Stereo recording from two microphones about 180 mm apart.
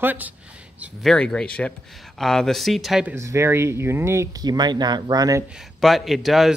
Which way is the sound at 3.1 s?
15° right (ahead or behind).